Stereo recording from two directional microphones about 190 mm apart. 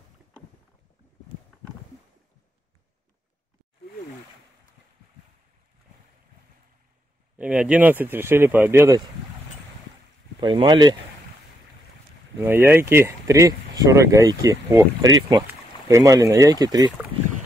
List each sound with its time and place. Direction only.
7.3 s speech: 5° right (ahead or behind)
10.4 s speech: 25° right (ahead or behind)
12.4 s speech: 10° right (ahead or behind)